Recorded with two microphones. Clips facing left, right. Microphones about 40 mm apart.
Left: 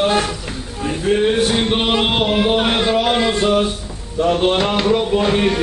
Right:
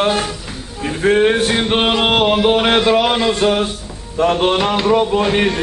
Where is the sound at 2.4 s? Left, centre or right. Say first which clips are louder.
Right 3 dB; right.